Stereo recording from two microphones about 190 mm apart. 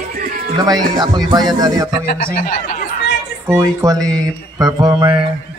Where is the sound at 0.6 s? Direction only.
20° right (ahead or behind).